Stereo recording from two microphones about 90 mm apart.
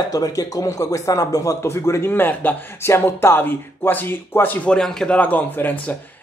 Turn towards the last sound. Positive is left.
turn(degrees=20)  # may be behind; listen again after turning